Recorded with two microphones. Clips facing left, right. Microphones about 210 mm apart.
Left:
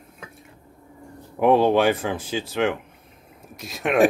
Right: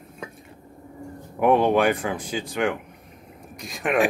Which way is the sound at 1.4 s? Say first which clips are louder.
Left 1 dB; 5° left (ahead or behind).